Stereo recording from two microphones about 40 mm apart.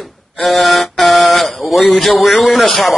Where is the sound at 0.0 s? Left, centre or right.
Centre.